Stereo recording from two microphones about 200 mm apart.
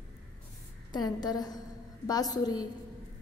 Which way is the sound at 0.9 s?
20° left (ahead or behind).